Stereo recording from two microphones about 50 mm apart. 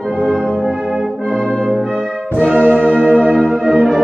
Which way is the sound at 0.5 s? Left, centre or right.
Centre.